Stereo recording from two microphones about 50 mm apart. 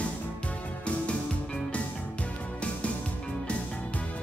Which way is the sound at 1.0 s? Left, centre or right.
Left.